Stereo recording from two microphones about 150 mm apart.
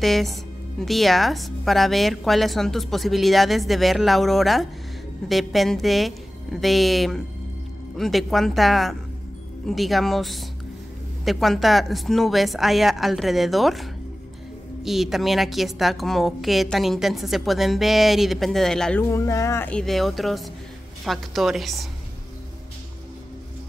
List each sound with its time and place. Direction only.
0.0 s speech: centre (ahead or behind)
14.9 s speech: centre (ahead or behind)
19.0 s speech: 20° left (ahead or behind)
19.7 s speech: centre (ahead or behind)